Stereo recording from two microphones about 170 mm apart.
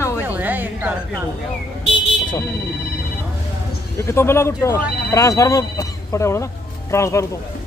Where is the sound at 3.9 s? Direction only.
15° left (ahead or behind).